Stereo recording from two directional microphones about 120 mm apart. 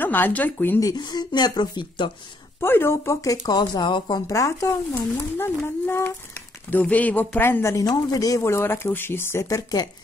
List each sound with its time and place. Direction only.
0.0 s speech: 15° left (ahead or behind)
0.7 s speech: 30° left (ahead or behind)
2.6 s speech: 20° left (ahead or behind); by 4.2 s 40° left (ahead or behind)
4.3 s speech: 25° left (ahead or behind)